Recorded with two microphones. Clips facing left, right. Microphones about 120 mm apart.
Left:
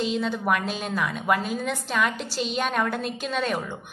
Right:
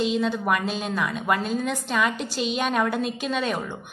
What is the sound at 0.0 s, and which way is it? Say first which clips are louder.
A woman's voice: right 2 dB; centre (ahead or behind).